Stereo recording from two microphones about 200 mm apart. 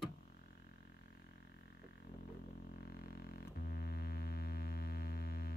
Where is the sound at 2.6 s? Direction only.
45° left (ahead or behind).